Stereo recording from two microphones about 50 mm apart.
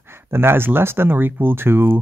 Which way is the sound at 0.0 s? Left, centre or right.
Right.